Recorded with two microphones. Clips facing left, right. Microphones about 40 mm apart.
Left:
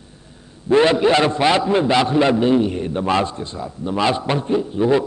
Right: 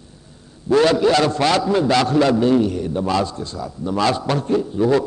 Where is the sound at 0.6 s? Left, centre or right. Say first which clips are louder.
Left 1 dB; left.